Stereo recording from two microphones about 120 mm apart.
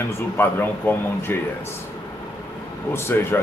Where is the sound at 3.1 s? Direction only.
15° left (ahead or behind).